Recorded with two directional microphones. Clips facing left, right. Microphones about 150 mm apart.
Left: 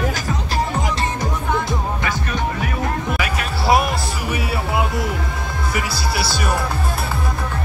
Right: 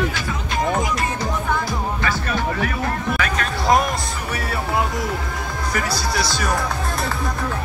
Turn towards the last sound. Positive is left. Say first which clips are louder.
# even
turn(degrees=5)  # may be behind; listen again after turning